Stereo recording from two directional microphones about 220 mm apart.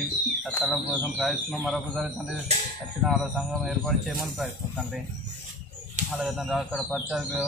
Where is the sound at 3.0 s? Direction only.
Centre (ahead or behind).